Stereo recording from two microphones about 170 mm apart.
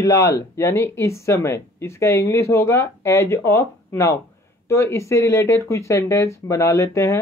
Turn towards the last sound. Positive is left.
turn(degrees=15)  # may be behind; listen again after turning